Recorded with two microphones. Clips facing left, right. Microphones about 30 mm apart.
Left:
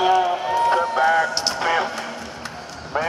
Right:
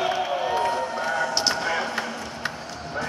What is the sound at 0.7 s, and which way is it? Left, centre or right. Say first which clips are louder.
Run: left 8 dB; left.